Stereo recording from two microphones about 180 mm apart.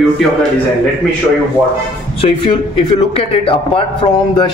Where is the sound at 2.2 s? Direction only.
30° left (ahead or behind).